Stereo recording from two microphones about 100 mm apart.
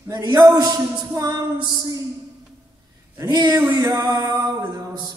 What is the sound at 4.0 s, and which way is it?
Speech, 45° right (ahead or behind).